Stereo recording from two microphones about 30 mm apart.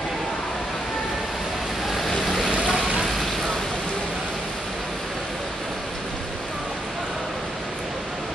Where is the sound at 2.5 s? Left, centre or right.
Right.